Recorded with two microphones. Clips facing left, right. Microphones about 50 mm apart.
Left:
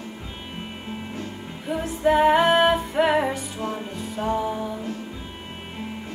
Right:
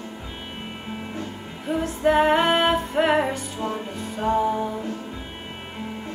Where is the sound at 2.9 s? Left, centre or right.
Centre.